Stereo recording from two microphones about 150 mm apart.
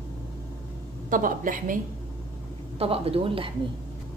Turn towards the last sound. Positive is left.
turn(degrees=-35)  # may be behind; listen again after turning